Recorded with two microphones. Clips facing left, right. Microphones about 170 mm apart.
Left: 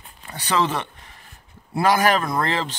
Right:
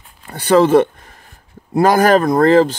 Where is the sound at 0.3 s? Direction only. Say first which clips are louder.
Right 12 dB; 50° right (ahead or behind).